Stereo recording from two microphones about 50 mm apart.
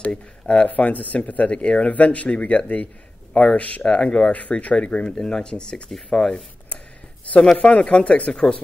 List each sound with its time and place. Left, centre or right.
0.0 s speech: left